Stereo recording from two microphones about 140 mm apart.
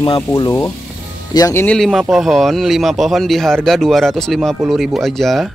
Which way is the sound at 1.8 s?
Centre (ahead or behind).